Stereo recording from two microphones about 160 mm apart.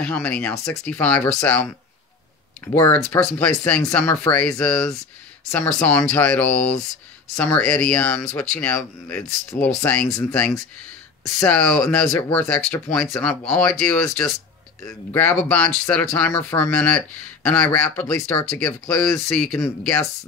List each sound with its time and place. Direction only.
0.0 s speech: 5° left (ahead or behind)
2.6 s speech: 15° left (ahead or behind)